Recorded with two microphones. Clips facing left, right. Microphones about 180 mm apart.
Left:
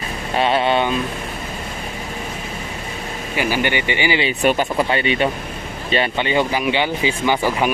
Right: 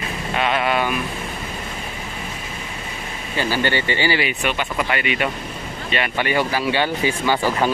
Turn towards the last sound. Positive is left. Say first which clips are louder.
# left 1 dB
turn(degrees=15)  # may be behind; listen again after turning